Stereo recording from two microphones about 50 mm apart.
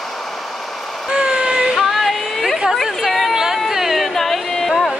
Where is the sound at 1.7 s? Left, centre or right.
Centre.